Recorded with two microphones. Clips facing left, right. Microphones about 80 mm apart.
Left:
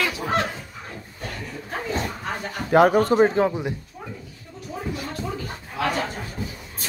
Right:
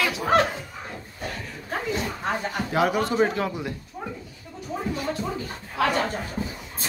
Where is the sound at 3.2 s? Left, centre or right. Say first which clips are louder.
Left 5 dB; left.